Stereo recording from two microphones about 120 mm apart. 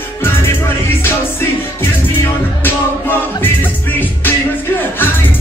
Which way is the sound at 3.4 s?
15° left (ahead or behind).